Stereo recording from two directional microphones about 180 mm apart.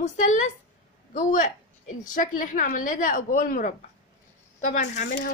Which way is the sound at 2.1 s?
45° left (ahead or behind).